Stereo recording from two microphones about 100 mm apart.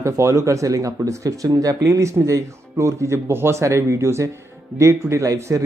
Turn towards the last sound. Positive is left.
turn(degrees=-30)  # may be behind; listen again after turning